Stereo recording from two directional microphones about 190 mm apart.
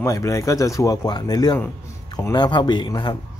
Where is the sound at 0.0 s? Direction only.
15° left (ahead or behind).